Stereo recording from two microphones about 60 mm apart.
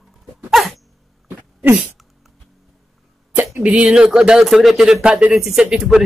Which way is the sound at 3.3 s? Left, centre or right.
Right.